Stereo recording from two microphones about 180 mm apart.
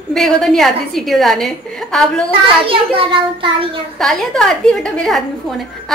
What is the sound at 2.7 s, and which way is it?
A child's voice, 30° right (ahead or behind).